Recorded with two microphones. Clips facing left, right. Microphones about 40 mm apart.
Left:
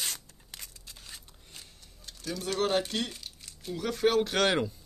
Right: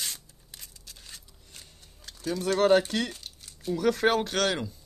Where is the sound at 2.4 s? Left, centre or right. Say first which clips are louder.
Right 7 dB; right.